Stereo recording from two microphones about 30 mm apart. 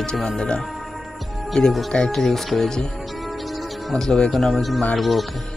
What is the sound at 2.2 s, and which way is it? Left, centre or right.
Speech, centre.